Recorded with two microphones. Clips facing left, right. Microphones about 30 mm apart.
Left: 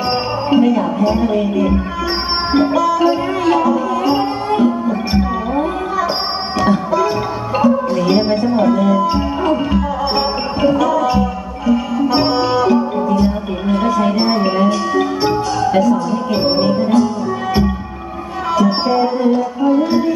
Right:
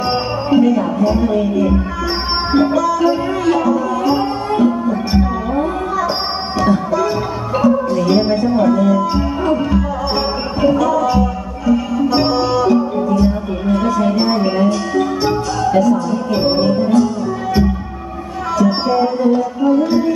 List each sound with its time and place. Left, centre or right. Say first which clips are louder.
0.1 s speech: even; centre
2.5 s music: even; centre
18.5 s music: even; centre